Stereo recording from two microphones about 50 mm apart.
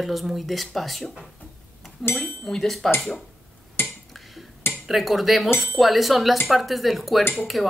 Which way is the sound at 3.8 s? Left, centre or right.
Centre.